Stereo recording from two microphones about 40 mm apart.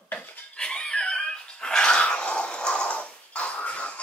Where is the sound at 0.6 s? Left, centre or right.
Left.